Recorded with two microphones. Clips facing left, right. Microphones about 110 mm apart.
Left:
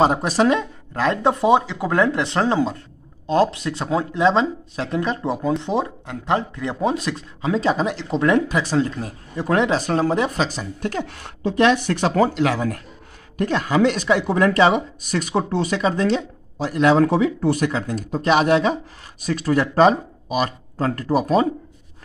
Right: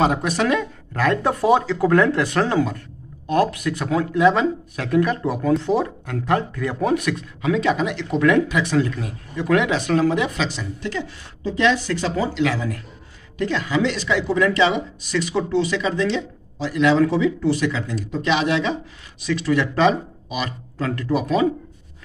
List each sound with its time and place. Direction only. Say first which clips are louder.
0.0 s speech: left 3 dB; 30° left (ahead or behind)